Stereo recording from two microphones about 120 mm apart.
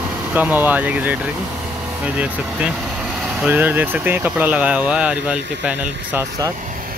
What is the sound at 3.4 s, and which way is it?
Speech, 15° right (ahead or behind).